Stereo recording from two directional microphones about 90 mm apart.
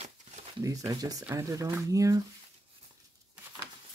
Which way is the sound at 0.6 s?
40° right (ahead or behind).